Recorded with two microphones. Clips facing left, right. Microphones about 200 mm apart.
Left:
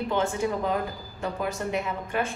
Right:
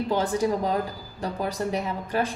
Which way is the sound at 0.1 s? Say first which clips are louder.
Right 3 dB; 35° right (ahead or behind).